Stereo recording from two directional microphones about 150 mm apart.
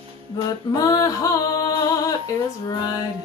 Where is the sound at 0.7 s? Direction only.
25° left (ahead or behind).